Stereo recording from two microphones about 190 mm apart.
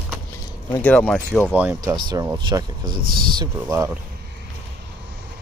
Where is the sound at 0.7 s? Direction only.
10° left (ahead or behind).